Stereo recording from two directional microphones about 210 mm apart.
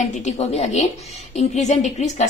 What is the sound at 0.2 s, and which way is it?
A woman's voice, 30° left (ahead or behind).